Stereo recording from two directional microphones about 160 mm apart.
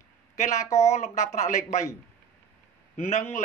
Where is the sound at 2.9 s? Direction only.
45° left (ahead or behind).